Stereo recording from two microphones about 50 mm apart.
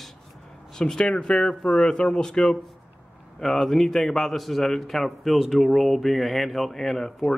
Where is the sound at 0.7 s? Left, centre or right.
Centre.